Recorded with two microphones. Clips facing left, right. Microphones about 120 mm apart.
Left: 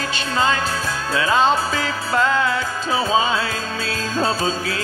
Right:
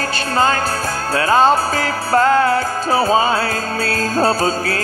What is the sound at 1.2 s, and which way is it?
Music, 40° right (ahead or behind).